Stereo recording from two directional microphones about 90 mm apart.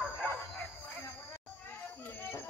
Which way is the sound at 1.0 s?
25° left (ahead or behind).